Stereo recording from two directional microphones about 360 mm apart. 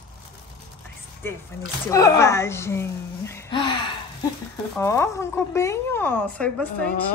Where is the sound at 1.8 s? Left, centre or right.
Centre.